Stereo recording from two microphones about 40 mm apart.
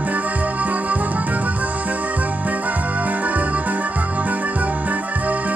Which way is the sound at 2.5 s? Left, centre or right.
Right.